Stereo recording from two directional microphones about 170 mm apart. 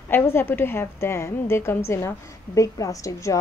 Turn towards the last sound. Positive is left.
turn(degrees=20)  # may be behind; listen again after turning